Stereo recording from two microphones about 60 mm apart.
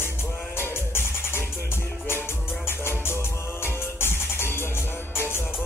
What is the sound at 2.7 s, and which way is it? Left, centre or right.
Music, left.